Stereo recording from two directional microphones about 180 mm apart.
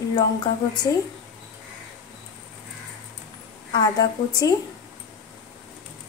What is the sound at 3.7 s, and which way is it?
Speech, 20° left (ahead or behind).